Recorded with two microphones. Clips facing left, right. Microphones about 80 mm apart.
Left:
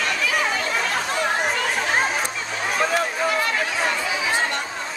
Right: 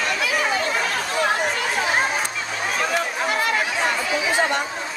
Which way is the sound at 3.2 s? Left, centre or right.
Centre.